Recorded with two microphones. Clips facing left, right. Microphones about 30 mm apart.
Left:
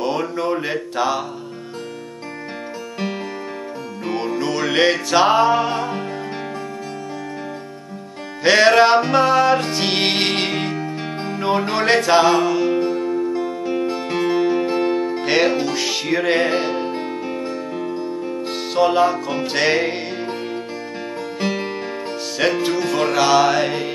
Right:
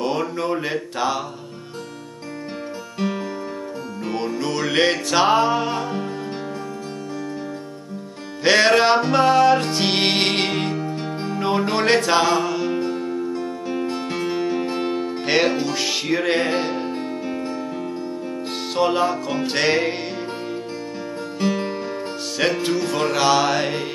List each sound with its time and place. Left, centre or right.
0.0 s speech: centre
4.0 s music: centre
8.5 s music: centre
18.8 s music: centre
21.4 s music: left
22.6 s music: centre